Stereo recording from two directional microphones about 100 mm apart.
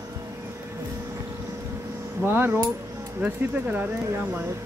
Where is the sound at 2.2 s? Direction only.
20° right (ahead or behind).